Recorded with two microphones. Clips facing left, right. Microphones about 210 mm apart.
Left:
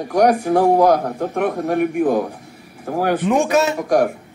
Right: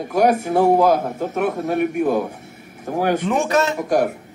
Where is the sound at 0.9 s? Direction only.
25° right (ahead or behind).